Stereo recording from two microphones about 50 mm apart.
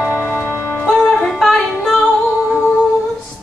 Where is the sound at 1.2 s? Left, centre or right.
Centre.